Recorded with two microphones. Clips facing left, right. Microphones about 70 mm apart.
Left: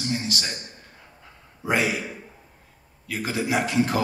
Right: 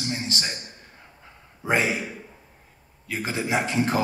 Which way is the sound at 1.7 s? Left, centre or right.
Right.